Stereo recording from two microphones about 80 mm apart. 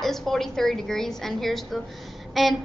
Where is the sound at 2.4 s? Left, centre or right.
Centre.